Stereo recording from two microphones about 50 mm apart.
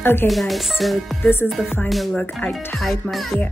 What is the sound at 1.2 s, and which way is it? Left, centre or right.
Speech, left.